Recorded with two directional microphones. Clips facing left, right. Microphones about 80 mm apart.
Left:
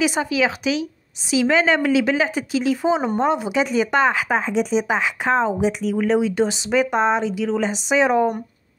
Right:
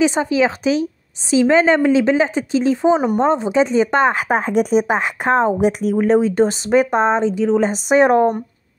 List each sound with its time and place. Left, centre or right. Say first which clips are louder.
0.0 s a woman's voice: right 4 dB; right
5.9 s a woman's voice: right 5 dB; right
7.6 s speech: right 4 dB; right